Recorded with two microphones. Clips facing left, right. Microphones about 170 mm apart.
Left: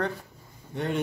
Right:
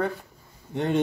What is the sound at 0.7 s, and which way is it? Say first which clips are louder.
Speech: right 5 dB; 25° right (ahead or behind).